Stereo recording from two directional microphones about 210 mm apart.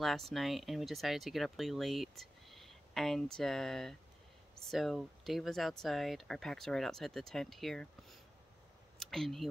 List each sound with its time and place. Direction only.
0.0 s speech: centre (ahead or behind)